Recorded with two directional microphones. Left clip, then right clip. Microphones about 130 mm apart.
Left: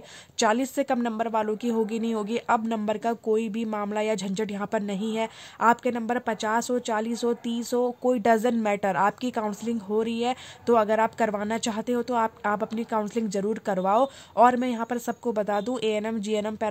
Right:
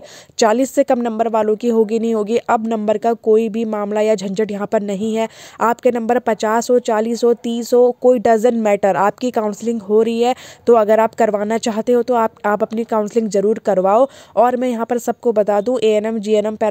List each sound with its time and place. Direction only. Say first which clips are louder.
0.4 s speech: right 10 dB; 50° right (ahead or behind)